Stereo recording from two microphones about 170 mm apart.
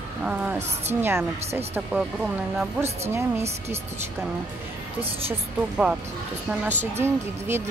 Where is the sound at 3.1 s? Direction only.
15° right (ahead or behind).